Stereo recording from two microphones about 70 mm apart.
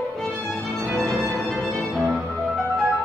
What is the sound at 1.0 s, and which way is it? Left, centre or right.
Music, centre.